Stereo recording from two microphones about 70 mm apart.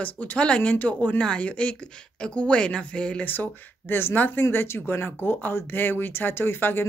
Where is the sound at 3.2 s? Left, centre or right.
Left.